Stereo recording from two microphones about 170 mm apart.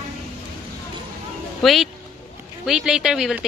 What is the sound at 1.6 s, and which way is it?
A woman's voice, centre (ahead or behind).